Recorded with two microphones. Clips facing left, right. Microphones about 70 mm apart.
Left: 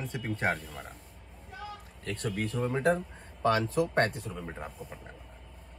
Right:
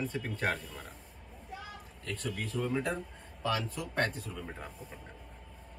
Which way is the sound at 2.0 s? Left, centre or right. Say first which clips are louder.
Left 4 dB; left.